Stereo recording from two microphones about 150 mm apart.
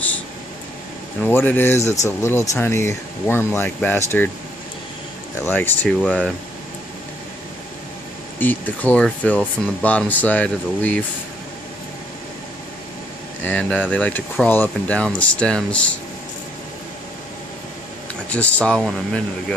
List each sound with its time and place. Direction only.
1.2 s speech: 15° left (ahead or behind)
5.4 s speech: 15° left (ahead or behind)
8.4 s speech: 10° left (ahead or behind)
13.4 s speech: 10° left (ahead or behind)
18.3 s speech: 10° left (ahead or behind)